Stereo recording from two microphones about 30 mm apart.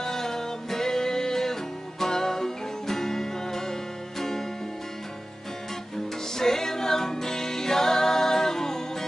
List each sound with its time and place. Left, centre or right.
0.0 s music: centre
6.3 s music: centre